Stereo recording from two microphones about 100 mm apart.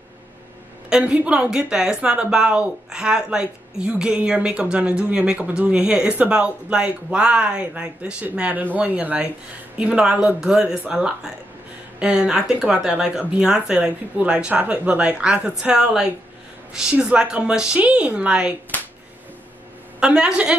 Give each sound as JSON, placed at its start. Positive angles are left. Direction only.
{"t": 0.8, "sound": "speech", "side_deg": -10}
{"t": 20.0, "sound": "speech", "side_deg": -10}